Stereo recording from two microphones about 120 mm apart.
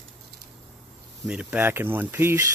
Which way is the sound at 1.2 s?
15° right (ahead or behind).